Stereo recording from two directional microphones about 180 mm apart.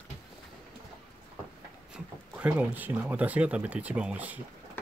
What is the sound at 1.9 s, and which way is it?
Speech, 10° right (ahead or behind).